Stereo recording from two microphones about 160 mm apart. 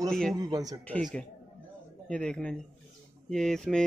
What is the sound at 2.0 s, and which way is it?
A man's voice, 5° left (ahead or behind).